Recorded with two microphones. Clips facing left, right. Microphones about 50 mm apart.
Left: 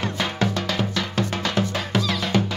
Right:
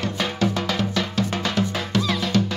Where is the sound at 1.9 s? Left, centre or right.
Centre.